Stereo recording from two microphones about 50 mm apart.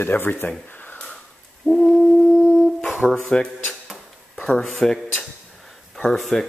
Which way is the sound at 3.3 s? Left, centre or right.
Centre.